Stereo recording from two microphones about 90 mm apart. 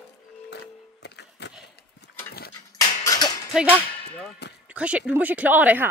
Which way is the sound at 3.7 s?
20° left (ahead or behind).